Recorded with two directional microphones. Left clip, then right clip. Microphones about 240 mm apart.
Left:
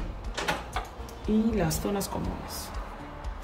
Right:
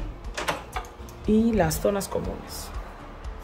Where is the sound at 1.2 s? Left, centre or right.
Centre.